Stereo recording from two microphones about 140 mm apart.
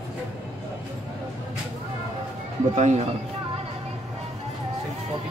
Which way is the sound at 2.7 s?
55° right (ahead or behind).